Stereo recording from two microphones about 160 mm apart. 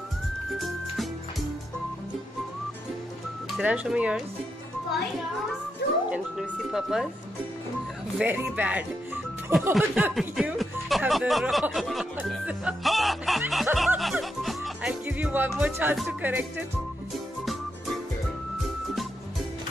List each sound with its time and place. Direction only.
0.6 s music: centre (ahead or behind)
3.5 s speech: 5° right (ahead or behind)
6.0 s speech: 5° right (ahead or behind)
8.2 s speech: 10° right (ahead or behind)